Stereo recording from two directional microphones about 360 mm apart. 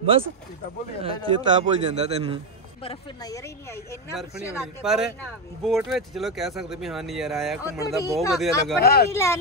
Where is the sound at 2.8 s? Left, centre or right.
Centre.